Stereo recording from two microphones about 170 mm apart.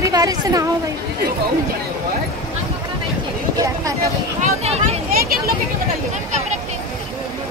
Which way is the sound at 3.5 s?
20° right (ahead or behind).